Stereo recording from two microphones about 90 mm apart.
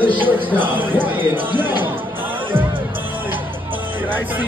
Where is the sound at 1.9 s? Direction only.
20° right (ahead or behind).